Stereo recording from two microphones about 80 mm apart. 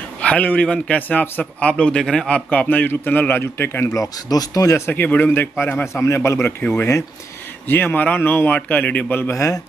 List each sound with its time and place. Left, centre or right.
0.2 s a man's voice: centre
3.9 s speech: left
4.8 s a man's voice: left
6.0 s a man's voice: left
7.6 s a man's voice: left